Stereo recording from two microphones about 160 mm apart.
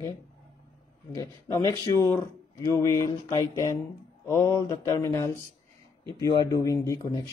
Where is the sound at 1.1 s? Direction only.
20° left (ahead or behind).